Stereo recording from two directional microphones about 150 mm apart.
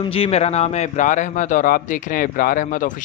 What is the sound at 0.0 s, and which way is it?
A man's voice, 40° left (ahead or behind).